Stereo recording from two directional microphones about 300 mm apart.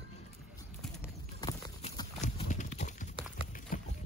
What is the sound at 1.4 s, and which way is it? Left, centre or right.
Clip-clop, centre.